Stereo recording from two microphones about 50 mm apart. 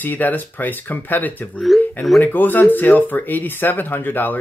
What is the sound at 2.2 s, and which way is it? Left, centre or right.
Speech, left.